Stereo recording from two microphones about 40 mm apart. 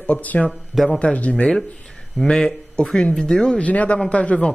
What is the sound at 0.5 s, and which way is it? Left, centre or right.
Speech, centre.